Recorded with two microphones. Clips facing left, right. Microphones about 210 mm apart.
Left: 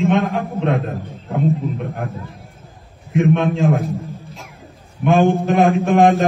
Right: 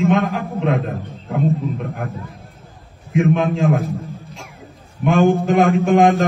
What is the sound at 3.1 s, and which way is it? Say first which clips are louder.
Speech: left 1 dB; centre (ahead or behind).